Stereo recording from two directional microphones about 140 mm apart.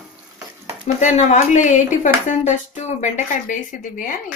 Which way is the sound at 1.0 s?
60° left (ahead or behind).